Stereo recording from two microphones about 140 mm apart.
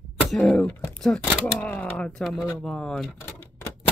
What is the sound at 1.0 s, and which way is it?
Speech, 5° left (ahead or behind).